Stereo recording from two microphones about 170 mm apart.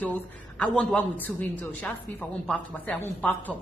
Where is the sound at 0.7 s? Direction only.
10° left (ahead or behind).